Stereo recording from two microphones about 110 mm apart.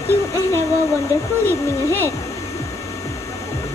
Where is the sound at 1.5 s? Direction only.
25° left (ahead or behind).